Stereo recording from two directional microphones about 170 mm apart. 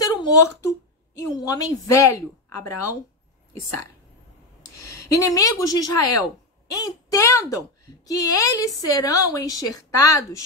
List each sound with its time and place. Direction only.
0.0 s a woman's voice: 25° left (ahead or behind)
4.7 s a woman's voice: 20° left (ahead or behind)